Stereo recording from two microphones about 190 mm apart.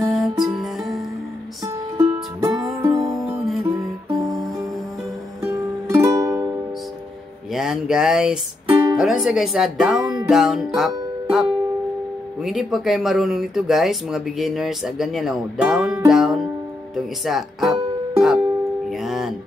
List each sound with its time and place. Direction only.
0.0 s music: centre (ahead or behind)
2.0 s music: 15° right (ahead or behind)
3.2 s music: centre (ahead or behind)
5.4 s music: 15° right (ahead or behind)
7.5 s a sound: centre (ahead or behind)
8.9 s speech: centre (ahead or behind)
10.2 s music: centre (ahead or behind)
12.4 s speech: centre (ahead or behind)
16.9 s music: centre (ahead or behind)